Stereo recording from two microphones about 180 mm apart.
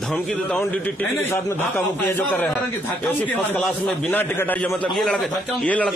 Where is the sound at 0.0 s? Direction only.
5° left (ahead or behind).